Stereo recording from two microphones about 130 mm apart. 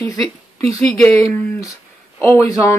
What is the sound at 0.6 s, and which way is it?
Speech, 55° right (ahead or behind).